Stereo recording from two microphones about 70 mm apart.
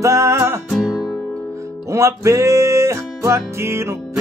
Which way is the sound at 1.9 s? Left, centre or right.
Right.